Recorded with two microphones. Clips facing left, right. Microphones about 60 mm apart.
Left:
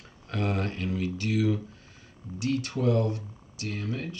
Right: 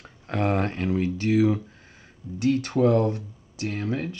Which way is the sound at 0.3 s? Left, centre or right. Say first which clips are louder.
Right 6 dB; right.